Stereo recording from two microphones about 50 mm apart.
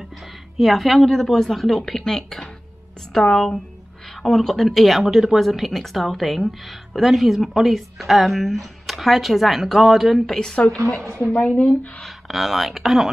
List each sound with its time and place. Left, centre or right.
0.6 s speech: centre
10.4 s a woman's voice: centre
12.0 s speech: centre